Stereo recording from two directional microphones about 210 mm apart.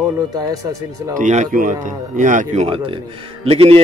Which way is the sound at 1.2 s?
35° right (ahead or behind).